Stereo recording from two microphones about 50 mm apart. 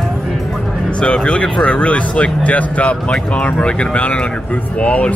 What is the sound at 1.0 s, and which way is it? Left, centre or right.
Speech, centre.